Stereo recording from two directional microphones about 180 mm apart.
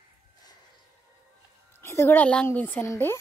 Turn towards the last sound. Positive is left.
turn(degrees=15)  # may be behind; listen again after turning